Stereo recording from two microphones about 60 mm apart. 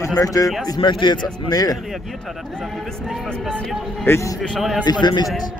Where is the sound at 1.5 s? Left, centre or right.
Left.